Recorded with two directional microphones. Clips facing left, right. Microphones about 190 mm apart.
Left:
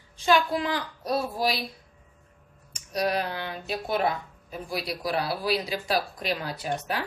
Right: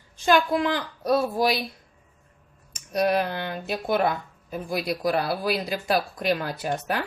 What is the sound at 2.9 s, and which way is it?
Speech, 55° right (ahead or behind).